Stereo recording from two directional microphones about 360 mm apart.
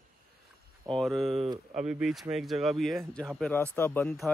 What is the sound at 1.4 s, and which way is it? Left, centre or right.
Speech, centre.